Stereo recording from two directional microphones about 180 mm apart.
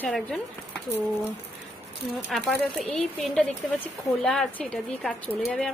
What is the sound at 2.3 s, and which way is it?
Speech, centre (ahead or behind).